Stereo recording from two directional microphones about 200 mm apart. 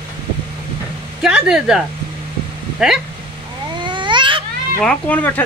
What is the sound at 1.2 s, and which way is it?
Speech, 5° right (ahead or behind).